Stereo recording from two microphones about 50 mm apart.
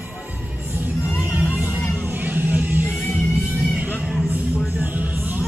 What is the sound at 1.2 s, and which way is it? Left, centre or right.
Music, right.